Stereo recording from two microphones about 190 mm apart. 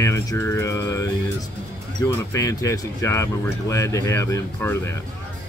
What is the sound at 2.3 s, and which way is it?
Speech, 15° left (ahead or behind).